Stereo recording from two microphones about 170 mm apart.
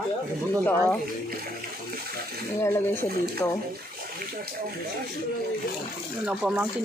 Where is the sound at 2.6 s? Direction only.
15° left (ahead or behind).